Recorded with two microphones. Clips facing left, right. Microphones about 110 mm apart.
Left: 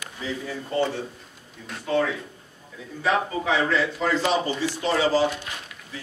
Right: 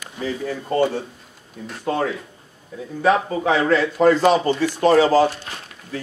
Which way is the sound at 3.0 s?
45° right (ahead or behind).